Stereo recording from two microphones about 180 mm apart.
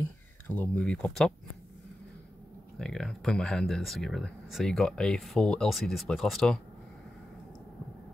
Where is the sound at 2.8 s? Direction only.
Centre (ahead or behind).